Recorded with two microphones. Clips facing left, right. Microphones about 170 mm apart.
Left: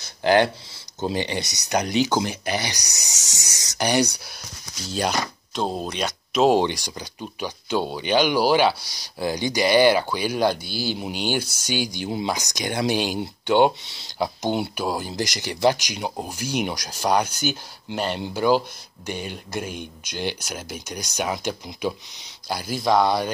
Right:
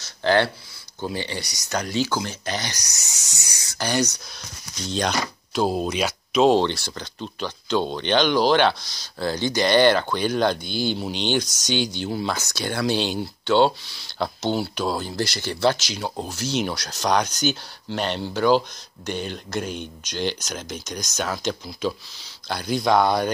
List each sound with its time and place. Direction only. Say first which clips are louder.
0.0 s a sound: left 2 dB; 15° left (ahead or behind)
1.0 s speech: left 4 dB; 20° left (ahead or behind); by 6.5 s centre (ahead or behind)
6.5 s speech: even; 15° left (ahead or behind)